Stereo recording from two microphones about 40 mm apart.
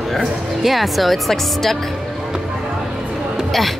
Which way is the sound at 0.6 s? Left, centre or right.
Centre.